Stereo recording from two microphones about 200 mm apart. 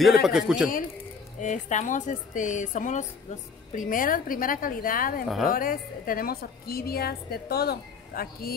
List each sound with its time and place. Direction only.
0.0 s a man's voice: centre (ahead or behind)
1.4 s a woman's voice: 35° left (ahead or behind)